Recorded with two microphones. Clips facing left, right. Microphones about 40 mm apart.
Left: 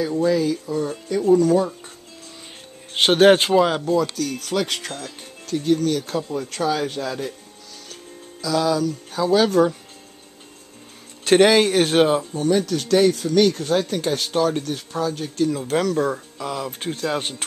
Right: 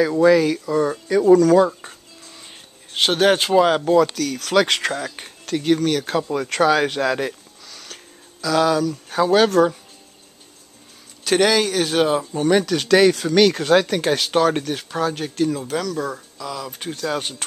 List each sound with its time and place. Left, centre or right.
0.0 s speech: right
3.0 s speech: centre
3.5 s speech: centre
4.1 s speech: right
5.1 s music: right
5.5 s speech: right
5.9 s speech: right
6.3 s speech: right
7.8 s music: right
11.2 s speech: centre
12.4 s speech: right
14.5 s speech: right
14.9 s speech: right
15.7 s speech: left